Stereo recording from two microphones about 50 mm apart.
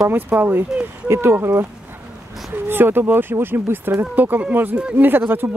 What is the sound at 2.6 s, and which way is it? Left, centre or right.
Speech, right.